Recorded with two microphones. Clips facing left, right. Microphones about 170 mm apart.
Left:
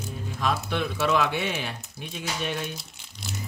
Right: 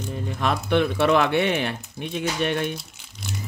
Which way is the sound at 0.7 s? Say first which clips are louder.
Right 10 dB; 60° right (ahead or behind).